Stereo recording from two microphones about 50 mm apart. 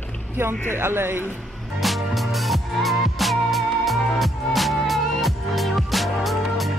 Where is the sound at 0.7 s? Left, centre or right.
Right.